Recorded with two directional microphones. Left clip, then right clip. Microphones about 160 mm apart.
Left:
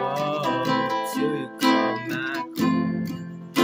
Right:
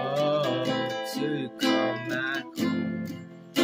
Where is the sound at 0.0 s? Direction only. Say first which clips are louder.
Left 1 dB; 20° left (ahead or behind).